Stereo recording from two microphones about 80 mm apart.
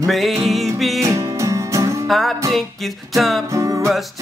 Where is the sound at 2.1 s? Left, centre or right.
Centre.